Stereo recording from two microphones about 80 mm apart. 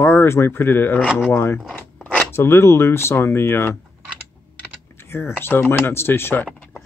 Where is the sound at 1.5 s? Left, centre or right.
Left.